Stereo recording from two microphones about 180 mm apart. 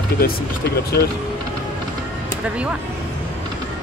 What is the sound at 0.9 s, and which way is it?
Speech, 60° left (ahead or behind).